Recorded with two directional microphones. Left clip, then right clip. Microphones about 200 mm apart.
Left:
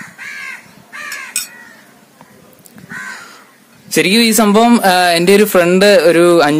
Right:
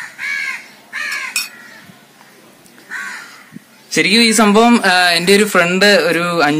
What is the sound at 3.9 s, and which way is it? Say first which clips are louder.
Speech: even; 55° left (ahead or behind).